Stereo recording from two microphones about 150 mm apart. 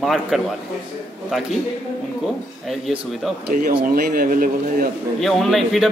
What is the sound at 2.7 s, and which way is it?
Speech, centre (ahead or behind).